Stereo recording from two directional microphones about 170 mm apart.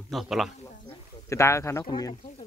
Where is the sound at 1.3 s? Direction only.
15° left (ahead or behind).